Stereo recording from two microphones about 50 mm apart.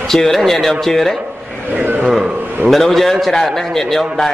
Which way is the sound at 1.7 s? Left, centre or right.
Right.